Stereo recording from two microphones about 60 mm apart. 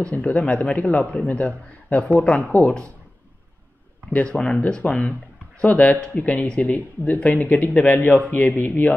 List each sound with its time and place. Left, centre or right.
0.1 s speech: left
4.1 s speech: left